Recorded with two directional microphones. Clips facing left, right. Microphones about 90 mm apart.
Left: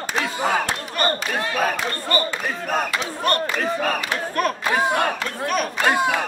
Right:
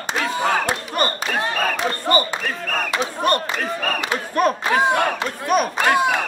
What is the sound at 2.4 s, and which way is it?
Speech, 15° left (ahead or behind).